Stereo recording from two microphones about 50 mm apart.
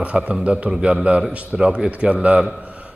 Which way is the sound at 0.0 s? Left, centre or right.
Right.